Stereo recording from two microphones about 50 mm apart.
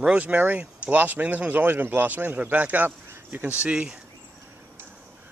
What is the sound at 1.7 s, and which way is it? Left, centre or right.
Speech, right.